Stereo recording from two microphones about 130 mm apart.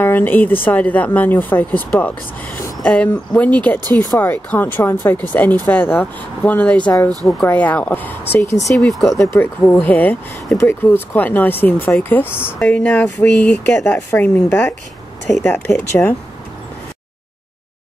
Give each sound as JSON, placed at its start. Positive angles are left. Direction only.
{"t": 0.0, "sound": "speech", "side_deg": 15}
{"t": 8.7, "sound": "speech", "side_deg": 0}
{"t": 9.3, "sound": "speech", "side_deg": 15}